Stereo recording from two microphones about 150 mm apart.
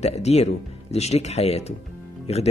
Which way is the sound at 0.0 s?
45° left (ahead or behind).